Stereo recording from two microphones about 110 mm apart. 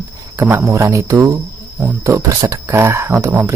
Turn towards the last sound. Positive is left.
turn(degrees=-25)  # may be behind; listen again after turning